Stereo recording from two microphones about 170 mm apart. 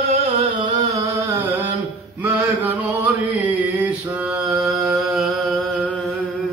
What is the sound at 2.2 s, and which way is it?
Chant, 10° right (ahead or behind).